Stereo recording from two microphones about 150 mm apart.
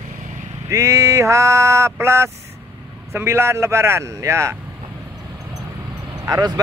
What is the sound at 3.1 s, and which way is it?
Speech, 15° right (ahead or behind).